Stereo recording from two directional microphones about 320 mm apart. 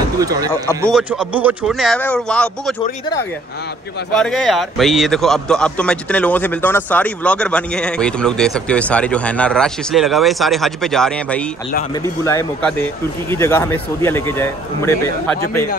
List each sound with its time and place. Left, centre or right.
0.2 s a man's voice: centre
4.2 s a man's voice: centre